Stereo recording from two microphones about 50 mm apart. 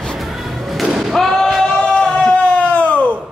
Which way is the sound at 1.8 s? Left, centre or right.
Left.